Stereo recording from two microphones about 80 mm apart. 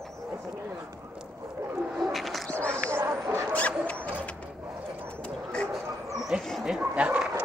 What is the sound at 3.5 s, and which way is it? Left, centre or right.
Dog, centre.